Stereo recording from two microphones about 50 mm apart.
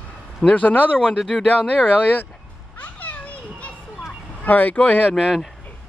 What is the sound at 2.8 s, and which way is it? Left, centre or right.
Children playing, left.